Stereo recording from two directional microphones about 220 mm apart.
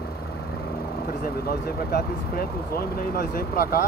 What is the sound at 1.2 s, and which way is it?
Speech, 45° left (ahead or behind).